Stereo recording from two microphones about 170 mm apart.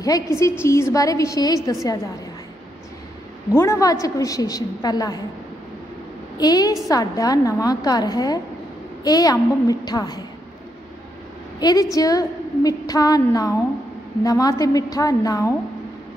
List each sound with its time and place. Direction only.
0.0 s a woman's voice: 20° left (ahead or behind)
3.5 s a woman's voice: 15° left (ahead or behind)
6.3 s a woman's voice: 20° left (ahead or behind)
11.6 s a woman's voice: 20° left (ahead or behind)